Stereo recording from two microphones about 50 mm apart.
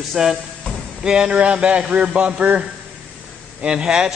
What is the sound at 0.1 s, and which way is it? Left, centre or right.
Speech, centre.